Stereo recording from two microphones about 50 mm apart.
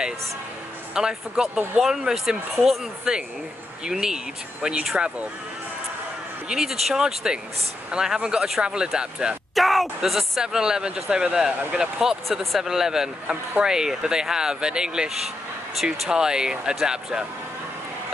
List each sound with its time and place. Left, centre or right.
0.9 s speech: centre
6.5 s speech: centre
9.6 s speech: centre
10.4 s speech: centre
16.1 s speech: centre